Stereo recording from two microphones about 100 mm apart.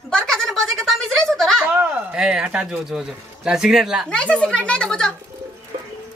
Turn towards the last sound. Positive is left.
turn(degrees=10)  # may be behind; listen again after turning